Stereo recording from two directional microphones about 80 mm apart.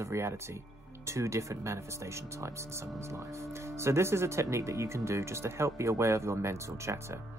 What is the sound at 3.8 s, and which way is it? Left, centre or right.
Speech, right.